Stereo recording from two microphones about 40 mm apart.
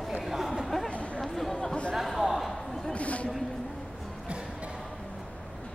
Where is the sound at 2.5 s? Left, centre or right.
Centre.